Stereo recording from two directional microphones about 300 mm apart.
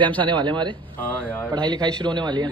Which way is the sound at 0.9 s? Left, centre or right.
Centre.